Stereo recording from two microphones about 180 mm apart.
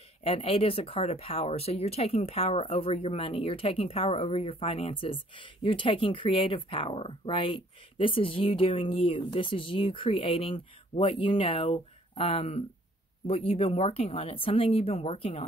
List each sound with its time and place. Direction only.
0.2 s speech: 30° left (ahead or behind)